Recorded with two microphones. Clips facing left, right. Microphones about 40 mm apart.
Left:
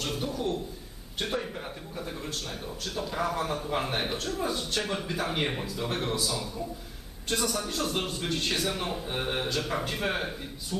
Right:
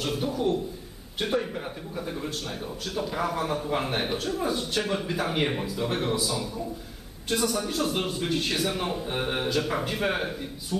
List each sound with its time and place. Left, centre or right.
0.0 s a man's voice: centre